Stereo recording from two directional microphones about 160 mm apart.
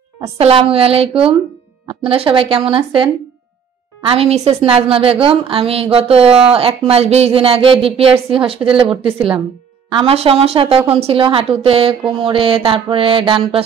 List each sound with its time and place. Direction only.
0.4 s speech: 35° right (ahead or behind)
4.1 s speech: 40° right (ahead or behind)
9.8 s speech: 35° right (ahead or behind)